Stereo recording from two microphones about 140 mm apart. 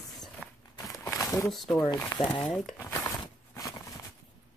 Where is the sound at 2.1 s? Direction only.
25° left (ahead or behind).